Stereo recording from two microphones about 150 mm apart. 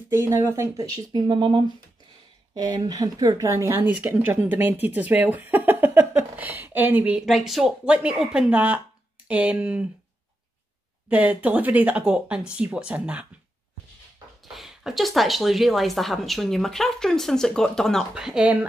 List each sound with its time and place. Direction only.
0.1 s speech: 20° right (ahead or behind)
11.1 s speech: 10° right (ahead or behind)
14.4 s a woman's voice: centre (ahead or behind)